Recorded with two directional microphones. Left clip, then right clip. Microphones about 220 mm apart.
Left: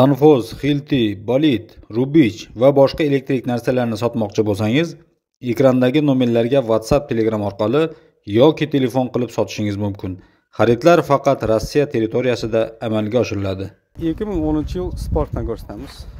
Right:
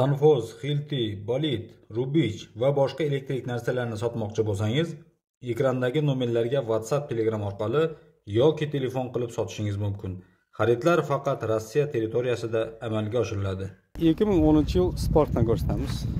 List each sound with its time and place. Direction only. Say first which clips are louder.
0.0 s a man's voice: left 9 dB; 35° left (ahead or behind)
13.9 s speech: even; 5° right (ahead or behind)